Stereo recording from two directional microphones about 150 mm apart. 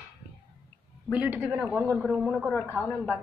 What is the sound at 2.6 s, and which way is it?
Speech, 15° right (ahead or behind).